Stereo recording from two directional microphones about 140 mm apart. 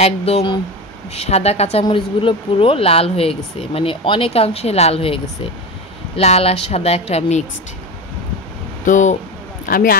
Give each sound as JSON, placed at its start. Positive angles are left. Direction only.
{"t": 0.0, "sound": "speech", "side_deg": 45}
{"t": 8.8, "sound": "speech", "side_deg": 65}
{"t": 9.7, "sound": "speech", "side_deg": 90}